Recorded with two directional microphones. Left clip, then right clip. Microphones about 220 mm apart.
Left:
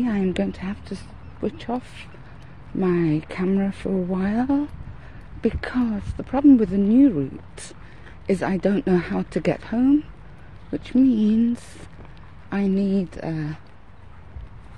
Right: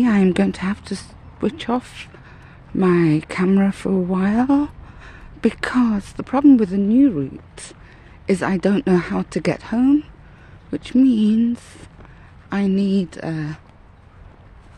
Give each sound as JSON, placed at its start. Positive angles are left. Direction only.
{"t": 0.0, "sound": "speech", "side_deg": -30}